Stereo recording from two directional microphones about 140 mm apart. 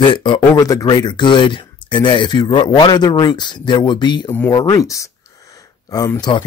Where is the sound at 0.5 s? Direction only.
25° left (ahead or behind).